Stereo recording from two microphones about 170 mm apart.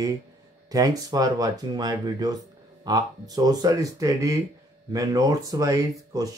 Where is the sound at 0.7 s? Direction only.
20° right (ahead or behind).